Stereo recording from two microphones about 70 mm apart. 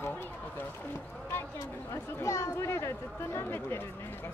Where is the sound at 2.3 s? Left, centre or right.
Left.